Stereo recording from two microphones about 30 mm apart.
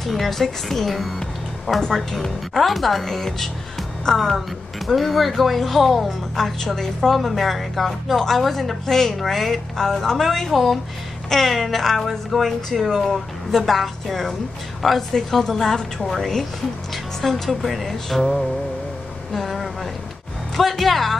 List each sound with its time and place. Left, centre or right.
0.0 s speech: centre
4.0 s speech: centre
4.8 s speech: centre
6.4 s a woman's voice: centre
12.1 s a woman's voice: centre
15.4 s a woman's voice: centre
16.0 s speech: centre
19.3 s a sound: centre
20.5 s speech: centre